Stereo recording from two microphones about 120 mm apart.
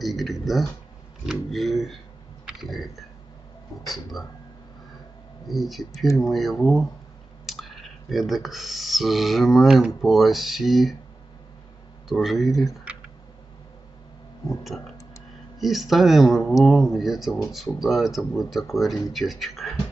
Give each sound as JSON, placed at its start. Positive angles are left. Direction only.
{"t": 0.0, "sound": "speech", "side_deg": 0}
{"t": 2.4, "sound": "typing", "side_deg": 0}
{"t": 3.8, "sound": "speech", "side_deg": 0}
{"t": 5.5, "sound": "speech", "side_deg": 0}
{"t": 12.1, "sound": "speech", "side_deg": 0}
{"t": 12.9, "sound": "clicking", "side_deg": -10}
{"t": 14.6, "sound": "speech", "side_deg": 0}